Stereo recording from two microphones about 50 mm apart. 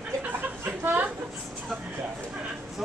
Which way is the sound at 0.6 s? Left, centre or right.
Right.